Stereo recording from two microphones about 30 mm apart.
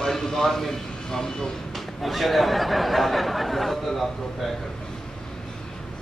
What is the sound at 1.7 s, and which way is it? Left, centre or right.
Speech, centre.